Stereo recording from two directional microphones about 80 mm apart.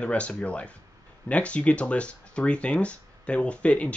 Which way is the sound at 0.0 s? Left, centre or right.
Centre.